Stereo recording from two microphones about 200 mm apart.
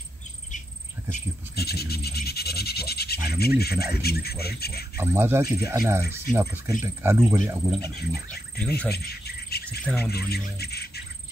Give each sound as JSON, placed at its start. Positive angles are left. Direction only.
{"t": 1.1, "sound": "speech", "side_deg": 50}
{"t": 4.9, "sound": "speech", "side_deg": -10}
{"t": 8.5, "sound": "speech", "side_deg": 5}
{"t": 8.9, "sound": "insect", "side_deg": 50}
{"t": 9.7, "sound": "speech", "side_deg": 5}
{"t": 10.3, "sound": "speech", "side_deg": 50}